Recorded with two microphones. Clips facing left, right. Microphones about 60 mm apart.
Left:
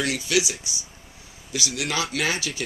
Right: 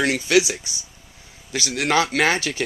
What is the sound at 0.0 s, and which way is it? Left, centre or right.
Speech, right.